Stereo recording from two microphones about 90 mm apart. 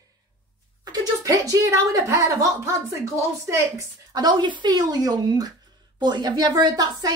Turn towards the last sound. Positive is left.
turn(degrees=-45)  # may be behind; listen again after turning